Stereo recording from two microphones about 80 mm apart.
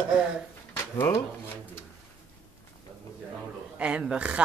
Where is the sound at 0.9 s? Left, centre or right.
Left.